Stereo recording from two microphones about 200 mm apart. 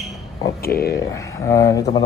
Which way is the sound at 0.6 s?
50° left (ahead or behind).